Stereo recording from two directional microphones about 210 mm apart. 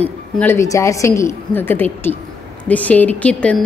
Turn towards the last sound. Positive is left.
turn(degrees=5)  # may be behind; listen again after turning